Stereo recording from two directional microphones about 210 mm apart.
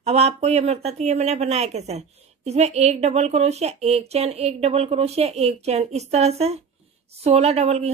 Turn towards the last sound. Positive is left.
turn(degrees=-30)  # may be behind; listen again after turning